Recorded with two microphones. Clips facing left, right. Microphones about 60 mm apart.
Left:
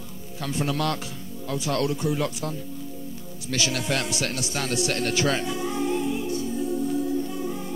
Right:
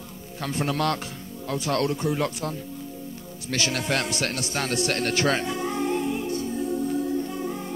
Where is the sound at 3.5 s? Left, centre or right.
Right.